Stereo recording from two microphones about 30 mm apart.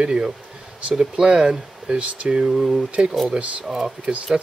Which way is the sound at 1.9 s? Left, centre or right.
Right.